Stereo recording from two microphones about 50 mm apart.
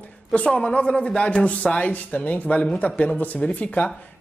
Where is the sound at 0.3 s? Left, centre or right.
Centre.